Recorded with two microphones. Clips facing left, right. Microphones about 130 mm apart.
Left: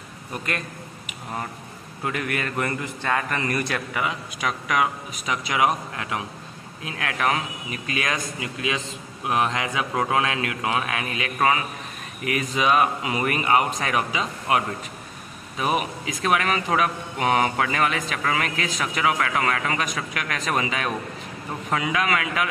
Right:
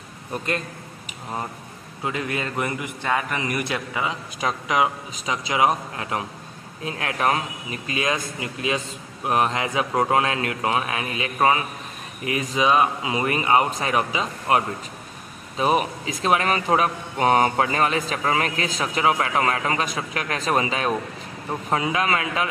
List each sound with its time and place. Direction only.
2.0 s a man's voice: 20° right (ahead or behind)
8.6 s a man's voice: 40° right (ahead or behind)